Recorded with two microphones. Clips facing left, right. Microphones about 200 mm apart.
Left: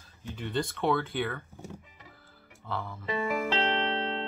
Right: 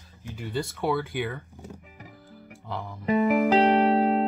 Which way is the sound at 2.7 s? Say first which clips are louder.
Right 1 dB; 15° right (ahead or behind).